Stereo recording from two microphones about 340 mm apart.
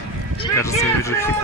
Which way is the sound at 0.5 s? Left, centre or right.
Centre.